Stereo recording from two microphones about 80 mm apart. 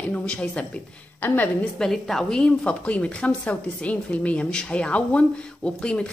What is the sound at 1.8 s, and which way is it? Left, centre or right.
A woman's voice, centre.